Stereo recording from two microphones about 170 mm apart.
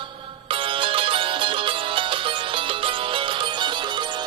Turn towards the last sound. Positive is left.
turn(degrees=-30)  # may be behind; listen again after turning